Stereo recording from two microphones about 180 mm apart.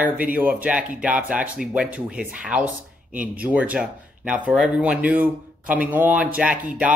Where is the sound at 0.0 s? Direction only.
10° right (ahead or behind).